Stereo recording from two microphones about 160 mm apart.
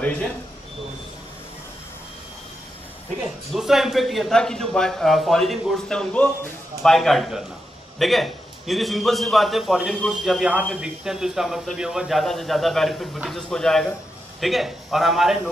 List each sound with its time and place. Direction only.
3.5 s a man's voice: centre (ahead or behind)